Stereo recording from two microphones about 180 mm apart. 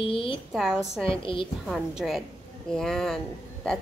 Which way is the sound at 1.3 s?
30° left (ahead or behind).